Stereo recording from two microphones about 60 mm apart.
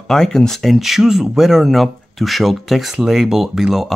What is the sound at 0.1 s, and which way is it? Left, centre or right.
Speech, centre.